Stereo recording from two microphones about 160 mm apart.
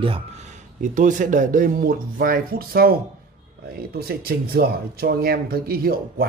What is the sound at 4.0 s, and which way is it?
Speech, 70° right (ahead or behind).